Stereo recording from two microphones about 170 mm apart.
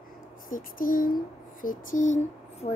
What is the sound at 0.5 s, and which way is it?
Speech, 55° left (ahead or behind).